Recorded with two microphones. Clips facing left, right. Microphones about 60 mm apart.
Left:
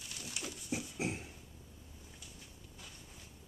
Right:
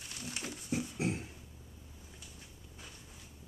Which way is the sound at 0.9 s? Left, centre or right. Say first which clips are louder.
Right 2 dB; centre.